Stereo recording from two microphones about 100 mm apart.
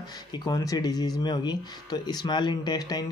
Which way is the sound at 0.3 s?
45° left (ahead or behind).